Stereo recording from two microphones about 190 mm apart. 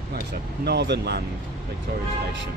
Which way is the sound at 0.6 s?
60° right (ahead or behind).